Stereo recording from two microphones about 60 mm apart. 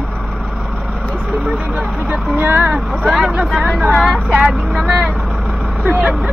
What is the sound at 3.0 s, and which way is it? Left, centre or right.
Vehicle, centre.